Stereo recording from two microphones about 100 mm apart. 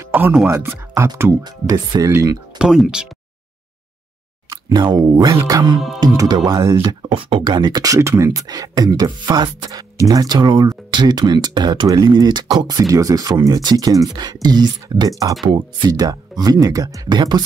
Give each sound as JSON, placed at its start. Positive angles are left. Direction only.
{"t": 0.1, "sound": "music", "side_deg": -15}
{"t": 0.5, "sound": "speech", "side_deg": -30}
{"t": 1.4, "sound": "speech", "side_deg": -40}
{"t": 2.6, "sound": "speech", "side_deg": -5}
{"t": 4.5, "sound": "speech", "side_deg": -45}
{"t": 5.3, "sound": "speech", "side_deg": -30}
{"t": 5.9, "sound": "speech", "side_deg": -40}
{"t": 7.2, "sound": "speech", "side_deg": -60}
{"t": 15.4, "sound": "speech", "side_deg": -50}